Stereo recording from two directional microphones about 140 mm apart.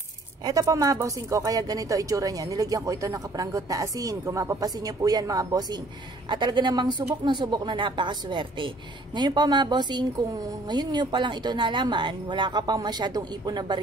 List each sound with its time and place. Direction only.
0.5 s a woman's voice: 25° right (ahead or behind)